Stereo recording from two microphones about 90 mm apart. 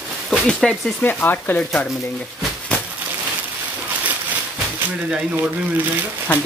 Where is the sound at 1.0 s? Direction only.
20° left (ahead or behind).